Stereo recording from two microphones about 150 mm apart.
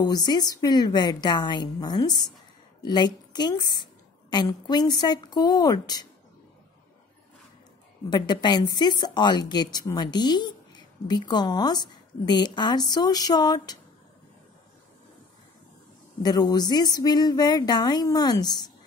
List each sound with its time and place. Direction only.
0.0 s a woman's voice: 25° left (ahead or behind)
8.1 s a woman's voice: 30° left (ahead or behind)
16.2 s a woman's voice: 30° left (ahead or behind)